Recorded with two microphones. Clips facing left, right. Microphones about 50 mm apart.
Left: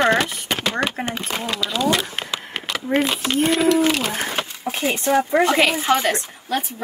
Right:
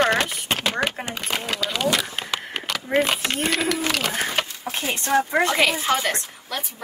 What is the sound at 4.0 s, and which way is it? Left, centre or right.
Speech, left.